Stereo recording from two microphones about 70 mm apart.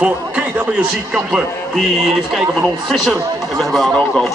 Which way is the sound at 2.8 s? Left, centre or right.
Centre.